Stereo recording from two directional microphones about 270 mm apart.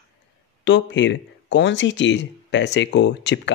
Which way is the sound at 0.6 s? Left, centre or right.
Left.